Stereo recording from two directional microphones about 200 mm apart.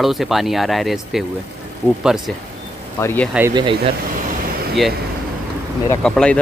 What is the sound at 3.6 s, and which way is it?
Speech, 25° right (ahead or behind).